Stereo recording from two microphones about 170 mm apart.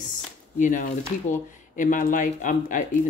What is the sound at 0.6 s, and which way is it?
Speech, 45° left (ahead or behind).